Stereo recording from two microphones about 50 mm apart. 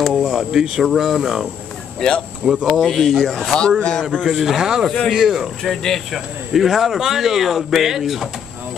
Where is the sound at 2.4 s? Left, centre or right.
Centre.